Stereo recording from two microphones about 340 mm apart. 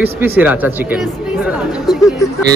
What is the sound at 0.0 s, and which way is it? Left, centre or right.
A man's voice, centre.